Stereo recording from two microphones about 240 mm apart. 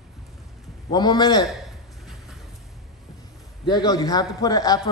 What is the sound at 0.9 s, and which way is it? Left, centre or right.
Speech, centre.